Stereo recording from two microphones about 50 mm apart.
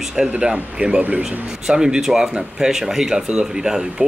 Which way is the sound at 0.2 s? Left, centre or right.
Centre.